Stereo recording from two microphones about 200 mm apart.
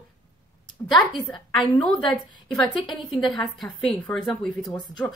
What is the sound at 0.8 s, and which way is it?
A woman's voice, 10° left (ahead or behind).